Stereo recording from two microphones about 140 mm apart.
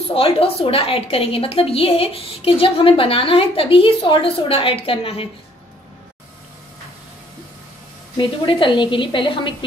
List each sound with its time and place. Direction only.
0.1 s a woman's voice: 45° left (ahead or behind)
8.2 s a woman's voice: 35° left (ahead or behind)